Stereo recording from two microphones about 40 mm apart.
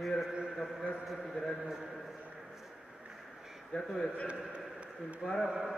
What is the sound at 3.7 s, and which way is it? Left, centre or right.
Speech, left.